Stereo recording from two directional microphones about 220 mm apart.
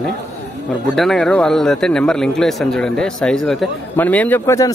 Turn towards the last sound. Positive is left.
turn(degrees=10)  # may be behind; listen again after turning